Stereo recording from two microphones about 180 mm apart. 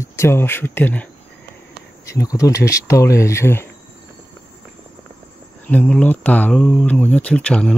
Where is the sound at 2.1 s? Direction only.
20° left (ahead or behind).